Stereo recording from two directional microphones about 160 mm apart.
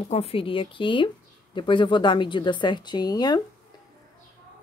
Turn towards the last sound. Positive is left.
turn(degrees=25)  # may be behind; listen again after turning